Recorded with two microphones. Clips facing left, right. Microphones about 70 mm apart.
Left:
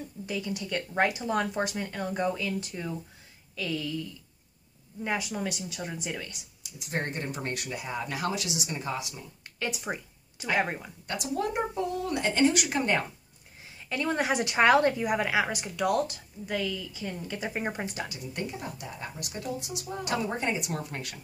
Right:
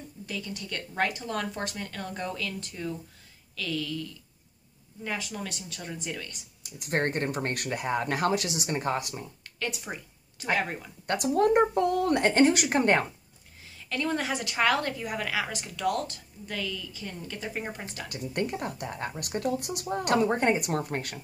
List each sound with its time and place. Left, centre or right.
0.3 s speech: centre
6.6 s speech: right
9.6 s speech: centre
11.1 s speech: right
13.7 s a sound: centre
14.2 s speech: left
18.0 s speech: right